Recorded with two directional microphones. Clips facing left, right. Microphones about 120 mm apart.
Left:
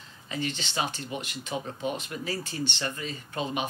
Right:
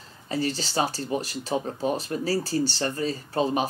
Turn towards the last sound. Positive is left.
turn(degrees=-35)  # may be behind; listen again after turning